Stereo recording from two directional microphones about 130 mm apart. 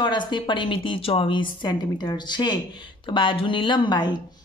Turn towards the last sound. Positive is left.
turn(degrees=35)  # may be behind; listen again after turning